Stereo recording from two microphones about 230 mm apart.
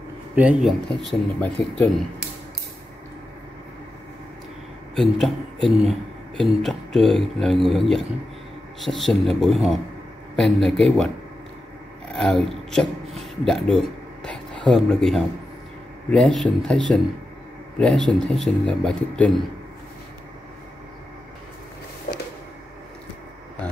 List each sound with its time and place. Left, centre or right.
0.4 s speech: centre
4.9 s speech: centre
12.1 s speech: centre
22.1 s a sound: left